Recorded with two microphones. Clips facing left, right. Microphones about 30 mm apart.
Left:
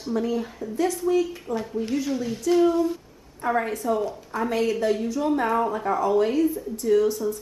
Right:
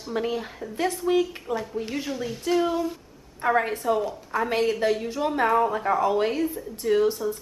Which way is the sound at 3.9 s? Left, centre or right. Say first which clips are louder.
Right 1 dB; centre.